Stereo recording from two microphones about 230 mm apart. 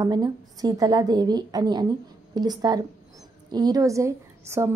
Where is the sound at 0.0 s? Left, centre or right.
Centre.